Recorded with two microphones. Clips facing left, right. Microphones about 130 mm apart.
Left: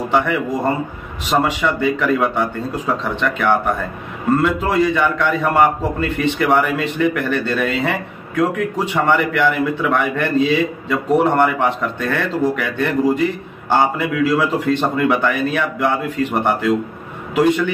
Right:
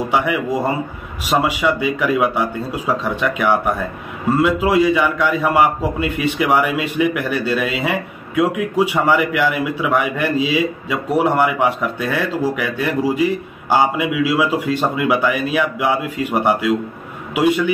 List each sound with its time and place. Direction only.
0.1 s a man's voice: 10° right (ahead or behind)